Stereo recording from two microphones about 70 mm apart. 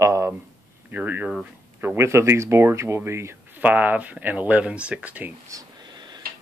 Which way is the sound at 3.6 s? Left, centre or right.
Right.